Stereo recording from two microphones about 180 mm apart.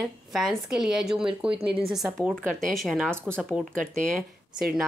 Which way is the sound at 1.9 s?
Centre (ahead or behind).